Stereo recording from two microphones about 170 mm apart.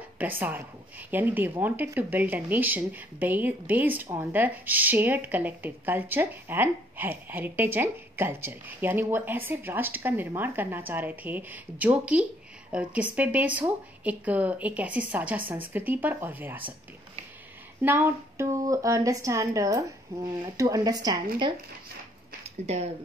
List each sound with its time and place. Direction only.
0.2 s a woman's voice: 10° right (ahead or behind)
17.8 s speech: 10° right (ahead or behind)